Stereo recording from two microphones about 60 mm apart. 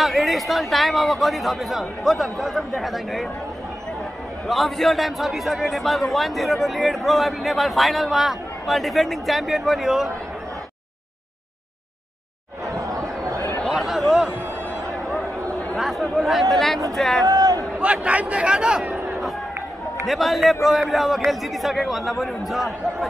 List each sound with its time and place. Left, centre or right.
0.0 s a man's voice: centre
4.5 s a man's voice: centre
12.7 s chatter: right
13.7 s a sound: centre
15.7 s chatter: centre
16.5 s a man's voice: centre
17.3 s a sound: right
18.0 s speech: right
18.9 s a sound: right
20.1 s a man's voice: centre